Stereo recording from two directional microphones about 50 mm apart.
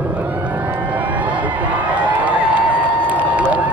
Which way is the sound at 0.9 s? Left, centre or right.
Right.